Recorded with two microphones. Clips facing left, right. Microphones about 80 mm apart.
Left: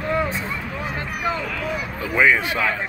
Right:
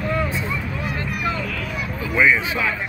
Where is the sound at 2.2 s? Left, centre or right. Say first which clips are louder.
Even; left.